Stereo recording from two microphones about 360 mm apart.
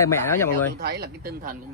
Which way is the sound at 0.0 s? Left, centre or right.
Centre.